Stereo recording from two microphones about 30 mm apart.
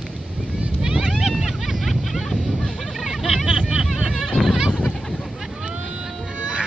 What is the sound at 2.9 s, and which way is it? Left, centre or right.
Vehicle, centre.